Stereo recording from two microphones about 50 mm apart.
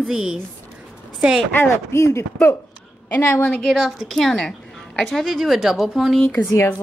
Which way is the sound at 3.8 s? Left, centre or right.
Centre.